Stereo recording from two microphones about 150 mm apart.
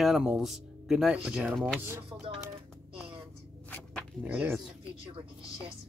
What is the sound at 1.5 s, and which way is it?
Speech, 5° left (ahead or behind).